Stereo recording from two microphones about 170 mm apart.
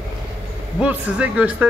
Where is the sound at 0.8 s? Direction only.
5° right (ahead or behind).